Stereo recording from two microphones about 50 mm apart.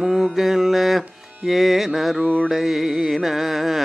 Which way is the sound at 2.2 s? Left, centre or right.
Right.